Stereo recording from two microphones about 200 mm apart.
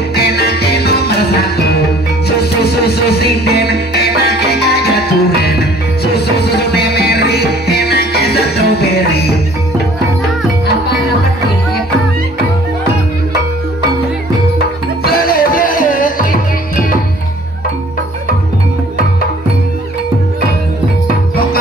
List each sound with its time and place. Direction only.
0.1 s music: 50° left (ahead or behind)
15.0 s music: 50° left (ahead or behind)